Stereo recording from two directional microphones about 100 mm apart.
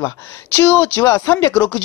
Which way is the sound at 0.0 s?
25° left (ahead or behind).